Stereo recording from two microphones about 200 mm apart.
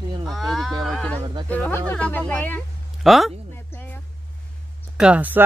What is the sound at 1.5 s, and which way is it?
Speech, 10° left (ahead or behind).